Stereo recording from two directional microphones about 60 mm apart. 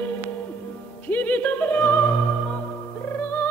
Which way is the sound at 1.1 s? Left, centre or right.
Left.